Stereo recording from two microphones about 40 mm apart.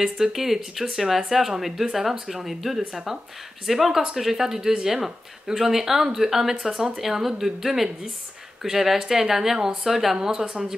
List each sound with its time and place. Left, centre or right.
0.0 s speech: centre
10.1 s speech: centre